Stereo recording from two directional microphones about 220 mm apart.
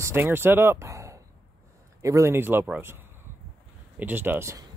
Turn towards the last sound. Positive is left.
turn(degrees=-10)  # may be behind; listen again after turning